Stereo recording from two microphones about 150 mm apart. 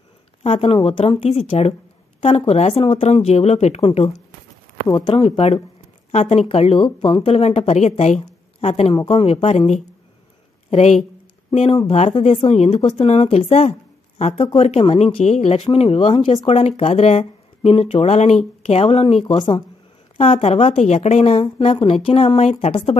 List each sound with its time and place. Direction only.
0.4 s a woman's voice: 45° left (ahead or behind)
4.8 s speech: 25° left (ahead or behind)
5.1 s a woman's voice: 40° left (ahead or behind)
19.2 s a woman's voice: 30° left (ahead or behind)